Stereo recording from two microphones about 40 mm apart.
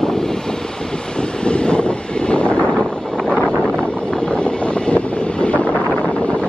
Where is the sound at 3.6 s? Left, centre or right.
Left.